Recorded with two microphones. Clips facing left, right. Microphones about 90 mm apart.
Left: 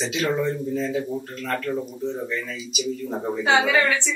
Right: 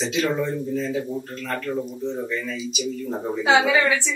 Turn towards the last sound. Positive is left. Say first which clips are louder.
# right 1 dB
turn(degrees=-10)  # may be behind; listen again after turning